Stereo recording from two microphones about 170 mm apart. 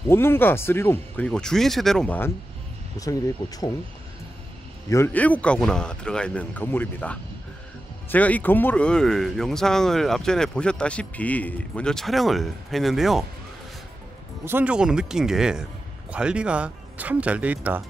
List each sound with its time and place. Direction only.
0.1 s a man's voice: 15° left (ahead or behind)
3.0 s speech: 20° left (ahead or behind)
4.8 s a man's voice: 15° left (ahead or behind); by 13.2 s centre (ahead or behind)
14.4 s speech: 10° right (ahead or behind)